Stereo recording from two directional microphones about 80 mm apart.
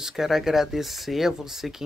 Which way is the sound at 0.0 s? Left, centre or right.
Centre.